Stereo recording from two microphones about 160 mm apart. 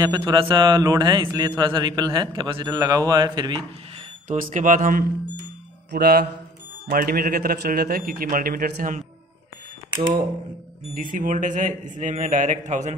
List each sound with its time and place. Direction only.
0.0 s a man's voice: 25° right (ahead or behind)
4.3 s a man's voice: 55° right (ahead or behind)
5.9 s a man's voice: 70° right (ahead or behind)
11.0 s a man's voice: 55° right (ahead or behind)